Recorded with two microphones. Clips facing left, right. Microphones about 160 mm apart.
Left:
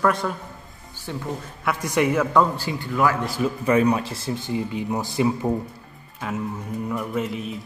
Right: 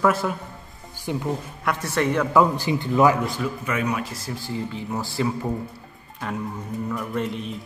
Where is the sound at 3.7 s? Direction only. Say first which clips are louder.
Left 9 dB; 35° left (ahead or behind).